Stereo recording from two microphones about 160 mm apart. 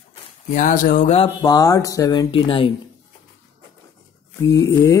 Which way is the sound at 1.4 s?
25° left (ahead or behind).